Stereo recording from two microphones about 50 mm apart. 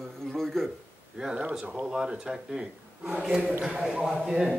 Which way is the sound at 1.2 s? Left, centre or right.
Centre.